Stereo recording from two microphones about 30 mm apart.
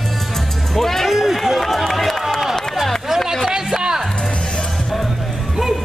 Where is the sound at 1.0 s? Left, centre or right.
Centre.